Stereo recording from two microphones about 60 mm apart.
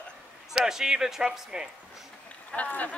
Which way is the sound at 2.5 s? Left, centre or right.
Left.